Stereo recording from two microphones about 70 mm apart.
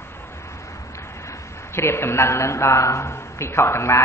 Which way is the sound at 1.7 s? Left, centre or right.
Left.